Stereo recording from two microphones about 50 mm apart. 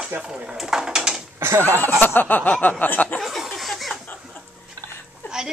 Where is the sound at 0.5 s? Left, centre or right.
Centre.